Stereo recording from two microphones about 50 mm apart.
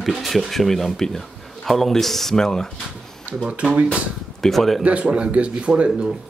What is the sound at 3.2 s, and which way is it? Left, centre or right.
Speech, right.